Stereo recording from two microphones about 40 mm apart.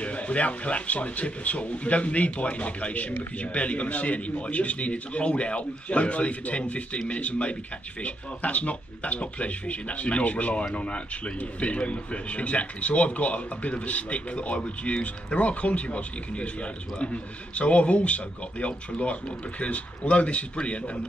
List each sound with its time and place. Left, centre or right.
0.0 s a man's voice: left